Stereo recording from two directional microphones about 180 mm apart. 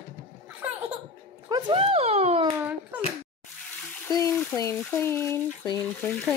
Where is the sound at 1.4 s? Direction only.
25° right (ahead or behind).